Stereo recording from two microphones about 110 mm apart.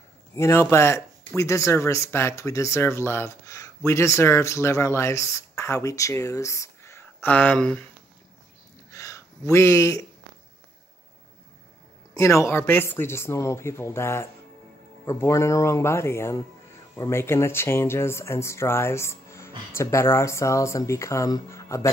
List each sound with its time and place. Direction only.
0.4 s speech: 25° left (ahead or behind); by 7.8 s 10° left (ahead or behind)
8.9 s a sound: 30° left (ahead or behind)
12.1 s speech: 25° left (ahead or behind)